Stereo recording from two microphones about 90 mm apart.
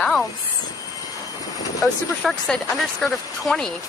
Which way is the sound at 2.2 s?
5° left (ahead or behind).